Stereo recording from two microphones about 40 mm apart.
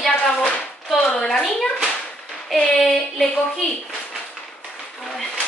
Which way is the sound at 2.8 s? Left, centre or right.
Centre.